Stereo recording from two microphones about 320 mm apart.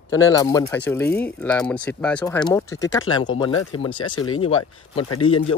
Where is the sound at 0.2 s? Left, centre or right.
Centre.